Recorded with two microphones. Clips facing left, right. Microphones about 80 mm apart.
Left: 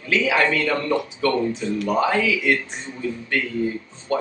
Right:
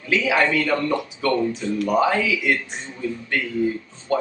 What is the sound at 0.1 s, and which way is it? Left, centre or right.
Speech, centre.